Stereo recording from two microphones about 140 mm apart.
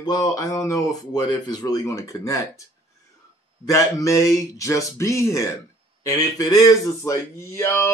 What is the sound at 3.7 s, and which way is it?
Speech, 20° left (ahead or behind).